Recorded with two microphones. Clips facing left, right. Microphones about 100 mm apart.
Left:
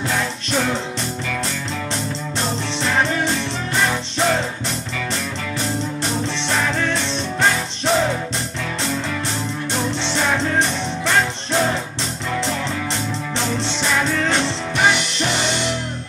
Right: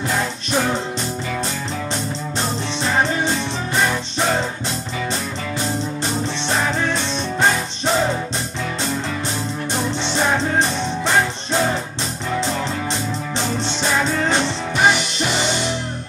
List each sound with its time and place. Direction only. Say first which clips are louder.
0.5 s music: right 1 dB; 15° right (ahead or behind)
2.8 s music: even; 15° right (ahead or behind)
5.6 s music: even; 15° right (ahead or behind)
10.0 s music: right 2 dB; 15° right (ahead or behind)
13.6 s music: right 2 dB; 15° right (ahead or behind)